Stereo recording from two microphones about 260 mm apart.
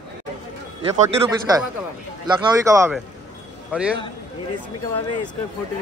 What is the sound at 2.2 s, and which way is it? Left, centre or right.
Speech, centre.